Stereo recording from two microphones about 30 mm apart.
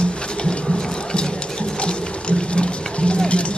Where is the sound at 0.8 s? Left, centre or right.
Left.